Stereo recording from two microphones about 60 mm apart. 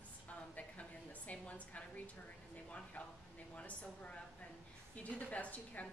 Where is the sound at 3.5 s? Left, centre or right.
Left.